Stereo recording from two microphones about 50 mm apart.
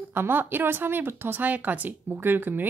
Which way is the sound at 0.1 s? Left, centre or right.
Right.